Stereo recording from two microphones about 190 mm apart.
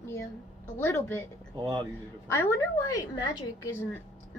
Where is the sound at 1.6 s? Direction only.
20° right (ahead or behind).